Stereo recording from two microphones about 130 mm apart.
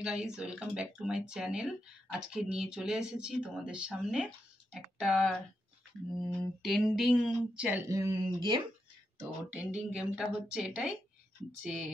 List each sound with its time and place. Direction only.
0.0 s speech: 5° right (ahead or behind)
7.8 s speech: 25° right (ahead or behind)
8.2 s speech: 40° right (ahead or behind)
9.2 s speech: 10° right (ahead or behind)